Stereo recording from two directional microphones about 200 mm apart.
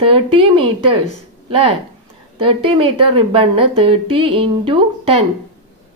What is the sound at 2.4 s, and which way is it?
A woman's voice, 25° right (ahead or behind).